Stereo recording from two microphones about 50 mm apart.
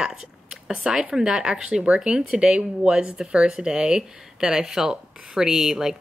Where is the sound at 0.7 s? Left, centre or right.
Centre.